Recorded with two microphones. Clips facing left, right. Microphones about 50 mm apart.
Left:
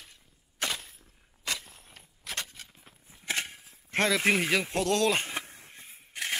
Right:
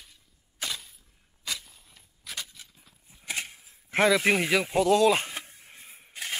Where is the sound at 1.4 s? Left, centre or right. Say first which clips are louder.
Left 2 dB; left.